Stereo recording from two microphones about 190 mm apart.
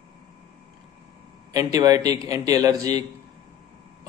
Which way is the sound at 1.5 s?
20° right (ahead or behind).